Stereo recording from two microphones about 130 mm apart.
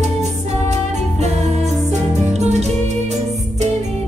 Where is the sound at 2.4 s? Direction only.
60° right (ahead or behind).